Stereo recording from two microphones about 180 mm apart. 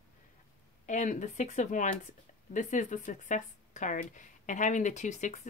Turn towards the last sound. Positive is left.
turn(degrees=40)  # may be behind; listen again after turning